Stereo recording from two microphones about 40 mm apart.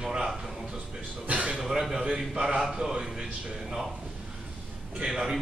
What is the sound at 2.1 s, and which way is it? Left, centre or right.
Speech, centre.